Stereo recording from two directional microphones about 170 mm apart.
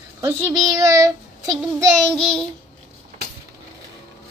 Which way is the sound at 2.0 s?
5° left (ahead or behind).